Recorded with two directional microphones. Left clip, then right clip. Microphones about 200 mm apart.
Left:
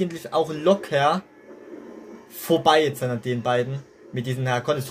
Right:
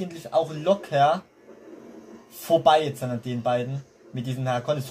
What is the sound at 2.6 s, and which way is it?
Speech, 40° left (ahead or behind).